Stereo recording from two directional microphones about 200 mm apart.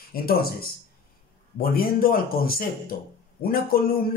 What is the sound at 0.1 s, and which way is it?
Speech, 50° left (ahead or behind).